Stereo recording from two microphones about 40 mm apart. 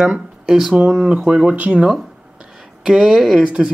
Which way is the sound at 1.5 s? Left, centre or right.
Right.